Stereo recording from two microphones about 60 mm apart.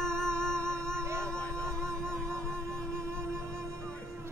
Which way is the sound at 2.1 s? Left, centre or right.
Centre.